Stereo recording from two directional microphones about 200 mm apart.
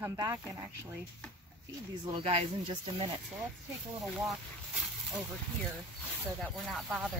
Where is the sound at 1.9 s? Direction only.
30° right (ahead or behind).